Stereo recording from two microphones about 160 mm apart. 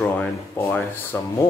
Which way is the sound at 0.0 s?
10° left (ahead or behind).